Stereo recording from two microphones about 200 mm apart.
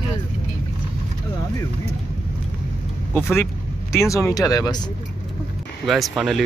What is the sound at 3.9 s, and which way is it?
Speech, 15° left (ahead or behind).